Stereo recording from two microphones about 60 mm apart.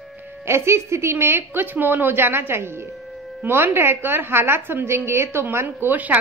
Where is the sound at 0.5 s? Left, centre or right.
Right.